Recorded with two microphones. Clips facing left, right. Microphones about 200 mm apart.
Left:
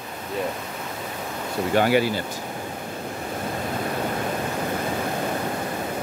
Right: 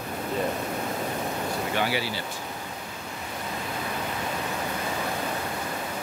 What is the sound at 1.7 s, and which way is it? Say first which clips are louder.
Speech: left 11 dB; 50° left (ahead or behind).